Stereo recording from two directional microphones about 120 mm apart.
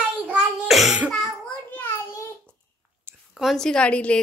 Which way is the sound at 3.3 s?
Centre (ahead or behind).